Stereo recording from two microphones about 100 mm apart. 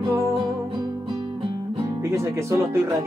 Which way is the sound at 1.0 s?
65° right (ahead or behind).